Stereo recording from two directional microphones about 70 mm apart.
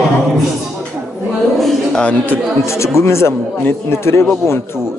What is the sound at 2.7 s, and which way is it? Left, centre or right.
A man's voice, left.